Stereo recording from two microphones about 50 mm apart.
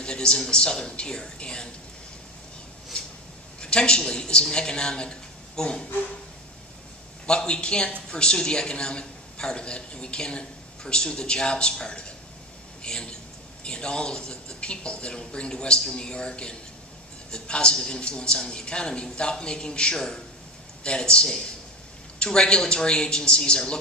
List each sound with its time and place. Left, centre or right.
0.0 s a man's voice: centre
3.6 s a man's voice: centre
7.2 s a man's voice: centre